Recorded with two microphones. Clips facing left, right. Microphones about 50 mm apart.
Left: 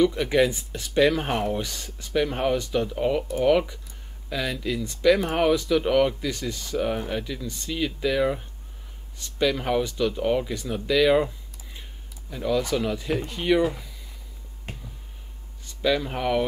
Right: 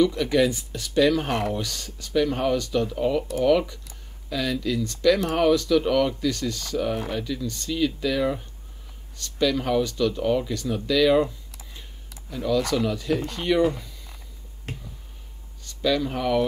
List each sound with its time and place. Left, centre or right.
0.0 s speech: centre
15.6 s speech: centre